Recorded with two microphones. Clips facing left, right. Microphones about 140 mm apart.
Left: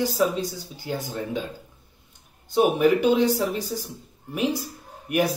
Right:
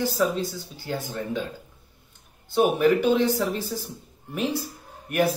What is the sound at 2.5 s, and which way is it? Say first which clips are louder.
Speech: left 1 dB; 15° left (ahead or behind).